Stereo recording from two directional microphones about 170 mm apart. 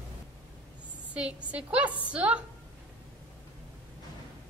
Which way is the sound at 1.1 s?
5° right (ahead or behind).